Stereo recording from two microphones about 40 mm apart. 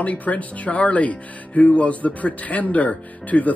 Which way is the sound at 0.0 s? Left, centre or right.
Left.